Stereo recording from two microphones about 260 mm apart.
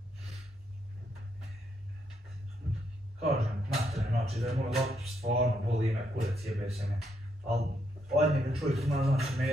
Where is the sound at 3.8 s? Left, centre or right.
Right.